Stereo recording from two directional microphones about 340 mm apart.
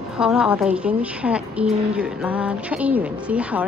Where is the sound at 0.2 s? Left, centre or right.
Centre.